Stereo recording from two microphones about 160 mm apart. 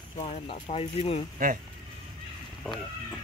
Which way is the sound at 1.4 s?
60° right (ahead or behind).